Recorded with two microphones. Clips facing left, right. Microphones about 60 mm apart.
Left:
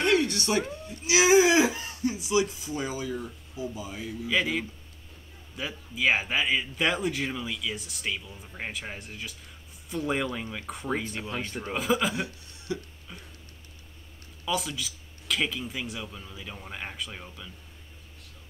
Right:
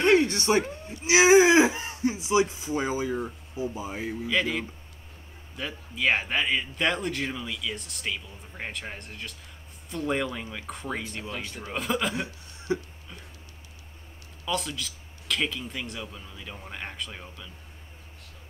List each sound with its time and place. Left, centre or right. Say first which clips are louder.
0.0 s music: right 3 dB; right
0.8 s speech: right 3 dB; right
4.3 s a man's voice: left 1 dB; centre
12.5 s a sound: right 5 dB; right
14.4 s a man's voice: even; centre